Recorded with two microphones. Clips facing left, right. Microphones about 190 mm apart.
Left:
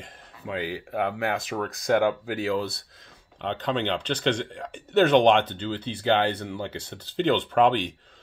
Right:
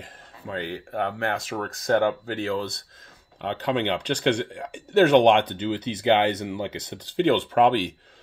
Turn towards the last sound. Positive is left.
turn(degrees=-10)  # may be behind; listen again after turning